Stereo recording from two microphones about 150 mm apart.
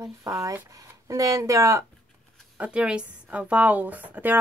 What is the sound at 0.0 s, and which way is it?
Speech, 20° right (ahead or behind).